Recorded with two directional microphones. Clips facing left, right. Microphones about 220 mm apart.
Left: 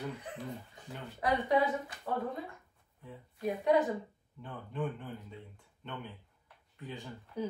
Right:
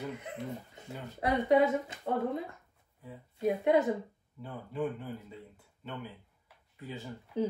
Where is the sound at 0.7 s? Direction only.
25° right (ahead or behind).